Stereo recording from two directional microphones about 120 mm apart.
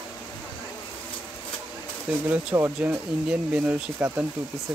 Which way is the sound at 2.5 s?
15° right (ahead or behind).